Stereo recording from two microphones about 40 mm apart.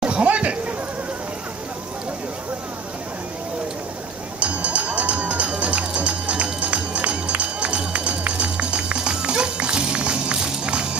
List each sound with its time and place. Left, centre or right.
0.0 s speech: right
4.4 s music: right